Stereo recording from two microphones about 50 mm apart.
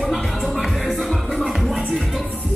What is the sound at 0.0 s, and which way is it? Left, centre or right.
Music, centre.